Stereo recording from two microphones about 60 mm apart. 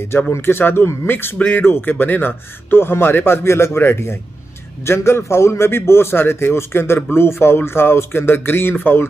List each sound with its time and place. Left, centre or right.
0.3 s a man's voice: left